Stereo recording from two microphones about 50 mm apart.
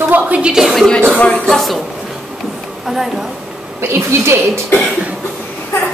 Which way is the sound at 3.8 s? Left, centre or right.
Right.